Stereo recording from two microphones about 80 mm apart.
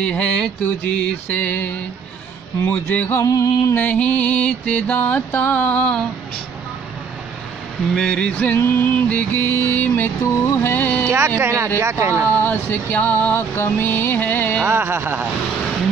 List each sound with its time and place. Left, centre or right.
0.0 s mantra: centre
2.6 s music: left
3.2 s music: left
3.7 s music: left
7.9 s mantra: centre
8.5 s music: left
9.1 s music: left
11.4 s speech: right
12.3 s music: left
14.6 s a sound: right